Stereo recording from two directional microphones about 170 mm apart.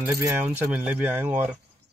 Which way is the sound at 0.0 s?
10° right (ahead or behind).